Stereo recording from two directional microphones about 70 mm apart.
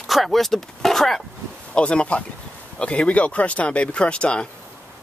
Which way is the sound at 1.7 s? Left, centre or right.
Centre.